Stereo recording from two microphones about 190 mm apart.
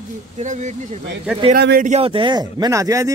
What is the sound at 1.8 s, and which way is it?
Speech, 35° right (ahead or behind).